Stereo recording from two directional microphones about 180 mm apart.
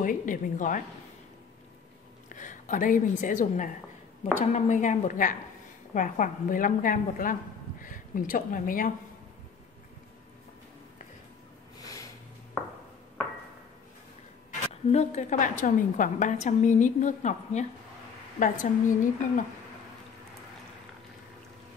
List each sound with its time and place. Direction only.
0.0 s a woman's voice: 45° left (ahead or behind)
2.2 s a woman's voice: 45° left (ahead or behind)
14.7 s a woman's voice: 40° left (ahead or behind)